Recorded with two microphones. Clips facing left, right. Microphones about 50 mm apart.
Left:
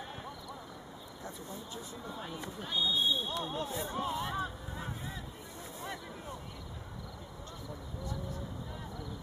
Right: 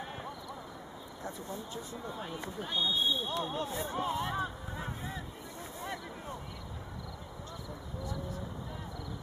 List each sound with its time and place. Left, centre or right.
2.0 s speech: centre